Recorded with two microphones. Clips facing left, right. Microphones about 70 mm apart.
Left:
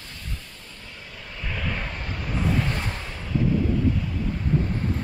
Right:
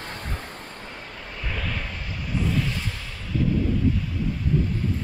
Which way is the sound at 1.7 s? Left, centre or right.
Left.